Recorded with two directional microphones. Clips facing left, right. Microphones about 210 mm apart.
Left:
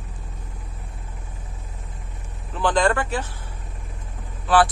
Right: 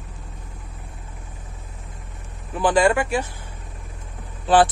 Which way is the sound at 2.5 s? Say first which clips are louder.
Right 3 dB; 10° right (ahead or behind).